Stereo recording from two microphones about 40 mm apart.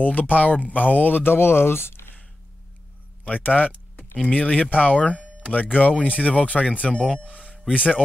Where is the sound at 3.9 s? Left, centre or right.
Left.